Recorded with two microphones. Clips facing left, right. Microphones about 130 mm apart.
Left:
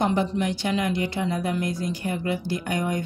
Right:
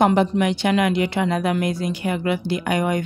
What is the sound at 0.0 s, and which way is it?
Speech, 75° right (ahead or behind).